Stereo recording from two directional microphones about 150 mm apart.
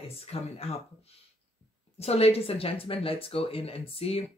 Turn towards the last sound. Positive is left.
turn(degrees=40)  # may be behind; listen again after turning